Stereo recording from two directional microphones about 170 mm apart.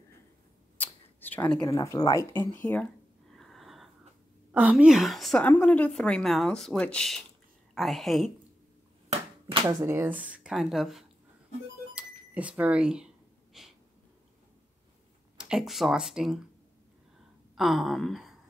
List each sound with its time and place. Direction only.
0.7 s a sound: 10° left (ahead or behind)
1.6 s speech: 20° left (ahead or behind)
2.6 s speech: 10° left (ahead or behind)
3.3 s sniff: centre (ahead or behind)
4.5 s a woman's voice: 10° right (ahead or behind)
9.5 s speech: 25° right (ahead or behind); by 11.1 s centre (ahead or behind)
11.9 s a sound: 5° right (ahead or behind)
15.3 s speech: 5° right (ahead or behind)
17.6 s a woman's voice: centre (ahead or behind)